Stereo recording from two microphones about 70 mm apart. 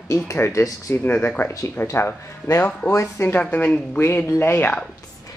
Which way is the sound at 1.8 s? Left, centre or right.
Left.